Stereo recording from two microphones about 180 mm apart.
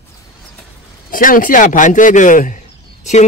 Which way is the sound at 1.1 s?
50° left (ahead or behind).